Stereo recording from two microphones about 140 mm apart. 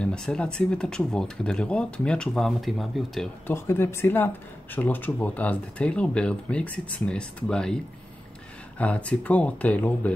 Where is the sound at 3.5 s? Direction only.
15° left (ahead or behind).